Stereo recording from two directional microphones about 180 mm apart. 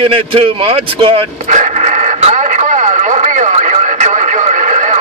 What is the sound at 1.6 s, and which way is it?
Radio, 40° right (ahead or behind).